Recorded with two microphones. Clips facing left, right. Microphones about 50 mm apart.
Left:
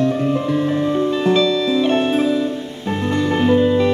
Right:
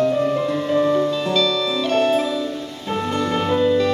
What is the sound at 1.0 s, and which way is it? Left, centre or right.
Music, left.